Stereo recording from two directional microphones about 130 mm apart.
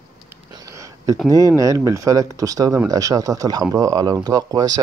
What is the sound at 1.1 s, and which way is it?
Speech, 25° right (ahead or behind).